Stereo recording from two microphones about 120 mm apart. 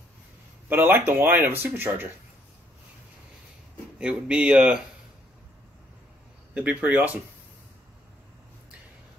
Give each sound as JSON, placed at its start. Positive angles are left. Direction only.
{"t": 0.7, "sound": "speech", "side_deg": -15}
{"t": 4.0, "sound": "speech", "side_deg": -10}
{"t": 6.5, "sound": "speech", "side_deg": -10}